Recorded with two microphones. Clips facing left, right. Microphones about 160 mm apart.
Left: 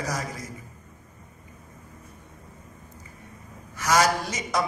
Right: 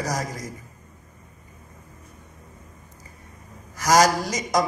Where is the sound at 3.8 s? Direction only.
40° right (ahead or behind).